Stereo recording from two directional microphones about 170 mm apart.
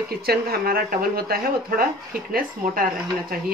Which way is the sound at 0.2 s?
65° right (ahead or behind).